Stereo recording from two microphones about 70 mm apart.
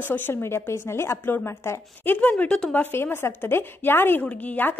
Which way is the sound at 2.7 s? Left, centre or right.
Left.